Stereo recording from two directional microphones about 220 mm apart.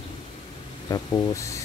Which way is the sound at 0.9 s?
15° left (ahead or behind).